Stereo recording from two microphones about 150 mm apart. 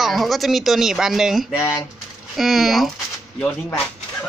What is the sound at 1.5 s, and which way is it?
Speech, 20° left (ahead or behind).